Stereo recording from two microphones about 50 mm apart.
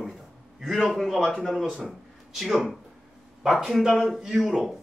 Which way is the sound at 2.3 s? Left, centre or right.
Centre.